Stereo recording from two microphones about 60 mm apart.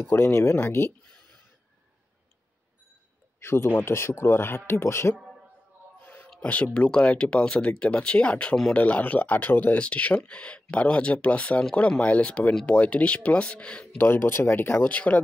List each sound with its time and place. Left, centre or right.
0.1 s speech: left
3.3 s speech: left
5.9 s a sound: left
6.4 s speech: left
13.9 s speech: left
14.9 s speech: left